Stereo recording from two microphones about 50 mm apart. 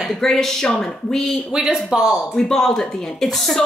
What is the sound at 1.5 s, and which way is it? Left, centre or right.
Speech, centre.